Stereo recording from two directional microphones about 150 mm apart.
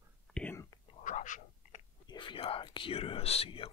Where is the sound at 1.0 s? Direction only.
60° left (ahead or behind).